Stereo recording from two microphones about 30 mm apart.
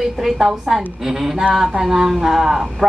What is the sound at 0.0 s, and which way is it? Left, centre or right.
A woman's voice, centre.